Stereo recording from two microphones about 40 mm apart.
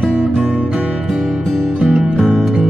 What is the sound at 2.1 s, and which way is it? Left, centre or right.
Music, centre.